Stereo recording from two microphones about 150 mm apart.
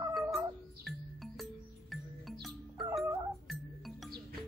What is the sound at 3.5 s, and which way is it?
Music, centre (ahead or behind).